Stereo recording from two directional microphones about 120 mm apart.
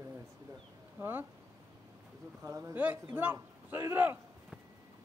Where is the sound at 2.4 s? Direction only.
20° right (ahead or behind).